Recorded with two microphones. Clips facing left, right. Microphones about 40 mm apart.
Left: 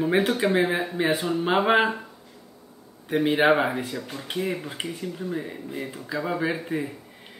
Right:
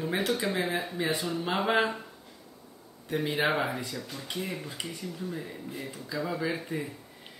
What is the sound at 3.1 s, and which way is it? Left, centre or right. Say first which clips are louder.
Speech: left 8 dB; left.